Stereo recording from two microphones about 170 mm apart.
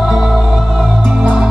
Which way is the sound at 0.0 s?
5° right (ahead or behind).